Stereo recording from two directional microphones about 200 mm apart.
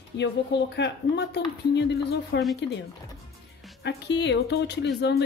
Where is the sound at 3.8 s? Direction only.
60° left (ahead or behind).